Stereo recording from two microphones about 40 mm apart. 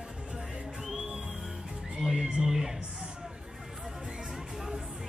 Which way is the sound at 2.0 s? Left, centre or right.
Centre.